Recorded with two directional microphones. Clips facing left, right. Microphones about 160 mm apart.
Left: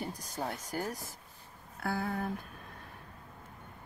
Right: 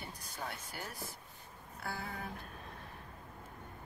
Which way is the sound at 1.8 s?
55° left (ahead or behind).